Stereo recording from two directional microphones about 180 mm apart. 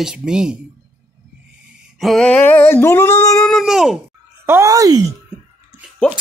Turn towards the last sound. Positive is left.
turn(degrees=5)  # may be behind; listen again after turning